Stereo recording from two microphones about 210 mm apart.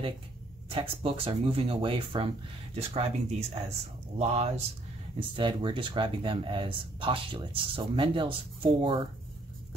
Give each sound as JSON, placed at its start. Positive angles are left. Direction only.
{"t": 0.7, "sound": "speech", "side_deg": -25}